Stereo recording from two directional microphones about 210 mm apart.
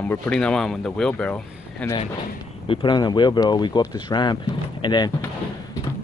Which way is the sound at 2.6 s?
25° left (ahead or behind).